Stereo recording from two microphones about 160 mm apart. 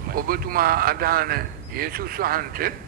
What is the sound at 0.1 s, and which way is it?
A man's voice, 65° right (ahead or behind).